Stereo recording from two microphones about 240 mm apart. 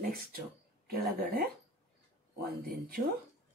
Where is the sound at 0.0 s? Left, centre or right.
Right.